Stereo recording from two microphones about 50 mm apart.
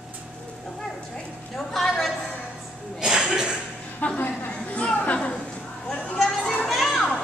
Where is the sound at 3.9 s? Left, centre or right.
Left.